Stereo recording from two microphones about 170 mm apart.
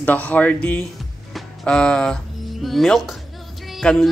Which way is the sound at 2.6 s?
Centre (ahead or behind).